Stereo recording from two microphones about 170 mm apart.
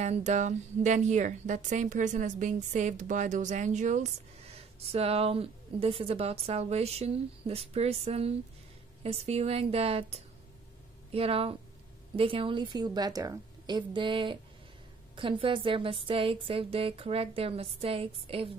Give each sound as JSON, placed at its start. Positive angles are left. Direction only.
{"t": 0.0, "sound": "a woman's voice", "side_deg": -45}